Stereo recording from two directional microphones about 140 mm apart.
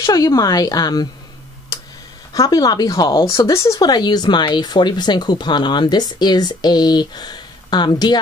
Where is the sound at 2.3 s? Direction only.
25° left (ahead or behind).